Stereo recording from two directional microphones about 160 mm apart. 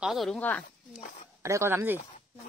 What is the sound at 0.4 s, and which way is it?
Speech, 10° left (ahead or behind).